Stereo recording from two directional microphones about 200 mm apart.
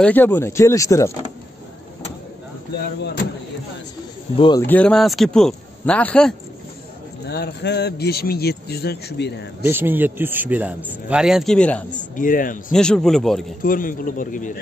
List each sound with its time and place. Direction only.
0.0 s speech: 10° left (ahead or behind)
4.4 s speech: 20° left (ahead or behind)
4.6 s speech: 5° left (ahead or behind)
7.2 s a man's voice: 55° left (ahead or behind)
9.7 s a man's voice: 10° right (ahead or behind); by 11.8 s 5° left (ahead or behind)
12.2 s a man's voice: 45° left (ahead or behind)
12.7 s speech: 5° left (ahead or behind)
13.6 s a man's voice: 45° left (ahead or behind)